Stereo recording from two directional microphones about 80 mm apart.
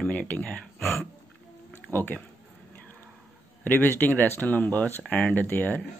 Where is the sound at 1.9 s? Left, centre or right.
Left.